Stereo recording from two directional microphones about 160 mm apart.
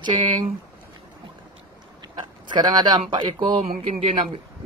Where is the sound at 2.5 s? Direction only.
25° right (ahead or behind).